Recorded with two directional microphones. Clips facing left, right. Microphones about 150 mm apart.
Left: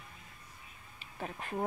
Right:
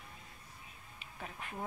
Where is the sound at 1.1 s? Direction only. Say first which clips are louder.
Left 7 dB; 40° left (ahead or behind).